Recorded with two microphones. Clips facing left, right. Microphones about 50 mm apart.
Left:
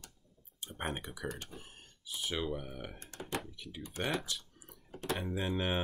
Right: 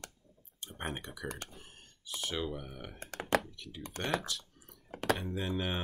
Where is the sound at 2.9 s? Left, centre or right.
Right.